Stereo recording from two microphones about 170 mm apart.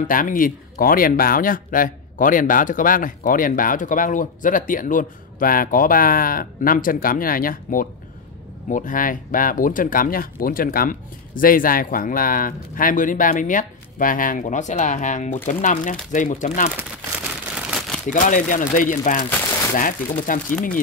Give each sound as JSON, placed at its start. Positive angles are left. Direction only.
{"t": 0.0, "sound": "speech", "side_deg": 50}
{"t": 17.6, "sound": "crumpling", "side_deg": -5}
{"t": 18.1, "sound": "speech", "side_deg": 50}